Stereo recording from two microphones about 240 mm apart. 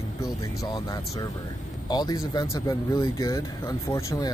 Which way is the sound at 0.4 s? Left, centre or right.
Centre.